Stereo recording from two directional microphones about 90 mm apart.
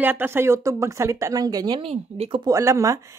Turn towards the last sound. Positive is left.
turn(degrees=-35)  # may be behind; listen again after turning